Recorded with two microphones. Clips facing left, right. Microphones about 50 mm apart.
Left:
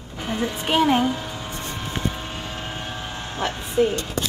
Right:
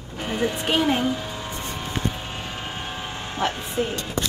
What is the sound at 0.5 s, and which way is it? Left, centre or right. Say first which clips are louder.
Music: left 5 dB; centre.